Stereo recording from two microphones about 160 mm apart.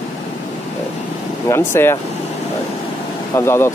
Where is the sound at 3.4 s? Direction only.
15° left (ahead or behind).